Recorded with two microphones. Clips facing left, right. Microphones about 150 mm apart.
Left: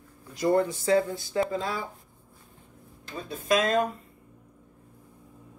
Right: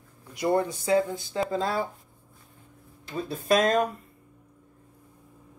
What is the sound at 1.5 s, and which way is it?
Speech, 30° right (ahead or behind).